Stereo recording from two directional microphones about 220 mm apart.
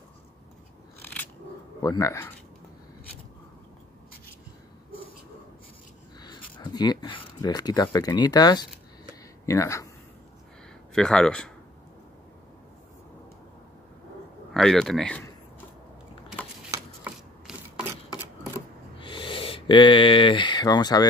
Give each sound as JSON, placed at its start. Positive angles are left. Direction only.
{"t": 1.0, "sound": "scissors", "side_deg": 10}
{"t": 1.8, "sound": "speech", "side_deg": 15}
{"t": 6.2, "sound": "speech", "side_deg": 20}
{"t": 11.0, "sound": "speech", "side_deg": 5}
{"t": 14.5, "sound": "speech", "side_deg": 0}
{"t": 16.7, "sound": "a sound", "side_deg": -5}
{"t": 18.9, "sound": "speech", "side_deg": 20}